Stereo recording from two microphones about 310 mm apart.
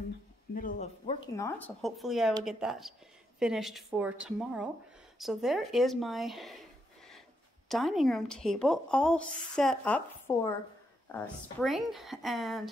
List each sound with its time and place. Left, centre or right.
0.6 s speech: left
1.3 s speech: centre
7.6 s speech: centre